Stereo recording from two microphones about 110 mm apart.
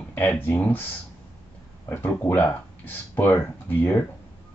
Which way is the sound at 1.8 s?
20° left (ahead or behind).